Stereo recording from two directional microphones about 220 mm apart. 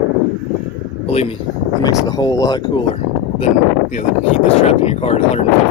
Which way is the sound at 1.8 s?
20° left (ahead or behind).